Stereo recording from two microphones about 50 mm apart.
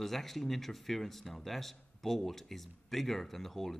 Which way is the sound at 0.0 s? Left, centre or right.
Centre.